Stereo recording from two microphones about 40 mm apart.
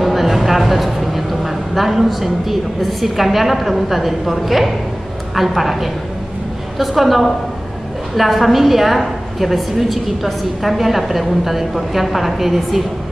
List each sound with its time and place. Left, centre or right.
0.0 s a woman's voice: centre